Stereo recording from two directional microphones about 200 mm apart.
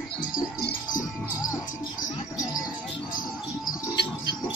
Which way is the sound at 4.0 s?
55° left (ahead or behind).